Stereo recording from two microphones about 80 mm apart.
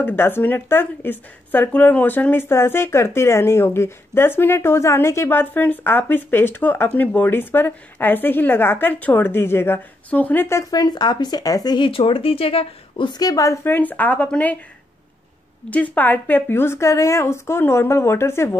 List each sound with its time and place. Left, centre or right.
0.0 s speech: left
10.7 s speech: left
12.9 s a woman's voice: left
13.2 s a woman's voice: left
13.7 s speech: left
15.7 s a woman's voice: left